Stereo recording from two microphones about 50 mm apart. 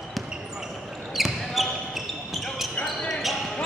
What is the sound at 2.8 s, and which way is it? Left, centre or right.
Basketball bounce, centre.